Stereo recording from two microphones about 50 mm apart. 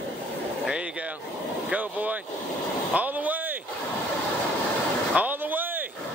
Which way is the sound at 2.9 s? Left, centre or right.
Right.